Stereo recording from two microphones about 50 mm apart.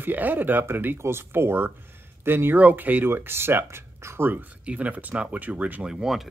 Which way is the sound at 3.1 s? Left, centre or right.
Right.